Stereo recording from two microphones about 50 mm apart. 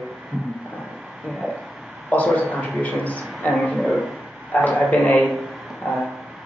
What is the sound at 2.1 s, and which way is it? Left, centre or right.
A man's voice, left.